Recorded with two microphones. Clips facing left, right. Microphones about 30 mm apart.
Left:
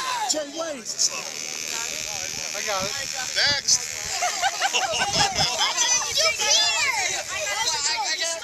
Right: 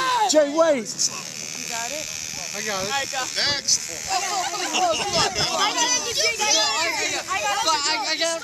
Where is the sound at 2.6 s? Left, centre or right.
Centre.